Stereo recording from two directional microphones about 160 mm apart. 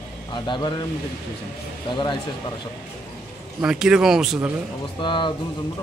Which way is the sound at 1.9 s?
30° left (ahead or behind).